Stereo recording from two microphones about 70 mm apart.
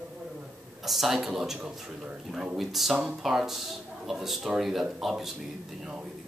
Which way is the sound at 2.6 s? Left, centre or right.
Centre.